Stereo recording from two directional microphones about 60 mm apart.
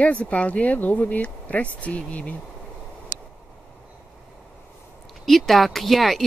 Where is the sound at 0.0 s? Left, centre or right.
Left.